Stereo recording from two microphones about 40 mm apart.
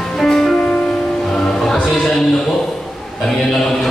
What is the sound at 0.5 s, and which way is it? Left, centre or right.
Music, left.